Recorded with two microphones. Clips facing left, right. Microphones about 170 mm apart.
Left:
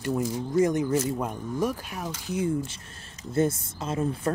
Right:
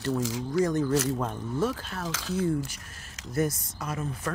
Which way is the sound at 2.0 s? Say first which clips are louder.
Right 1 dB; 90° right.